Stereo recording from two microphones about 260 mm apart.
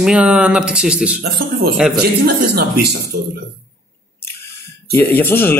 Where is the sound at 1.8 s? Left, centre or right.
Centre.